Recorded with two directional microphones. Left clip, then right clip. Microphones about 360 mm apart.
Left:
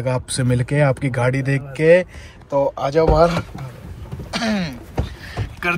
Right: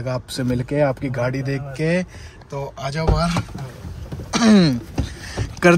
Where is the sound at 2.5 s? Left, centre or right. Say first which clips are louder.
Left 10 dB; centre.